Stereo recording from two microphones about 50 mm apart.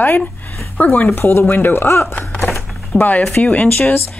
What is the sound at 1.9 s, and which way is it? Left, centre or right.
Speech, left.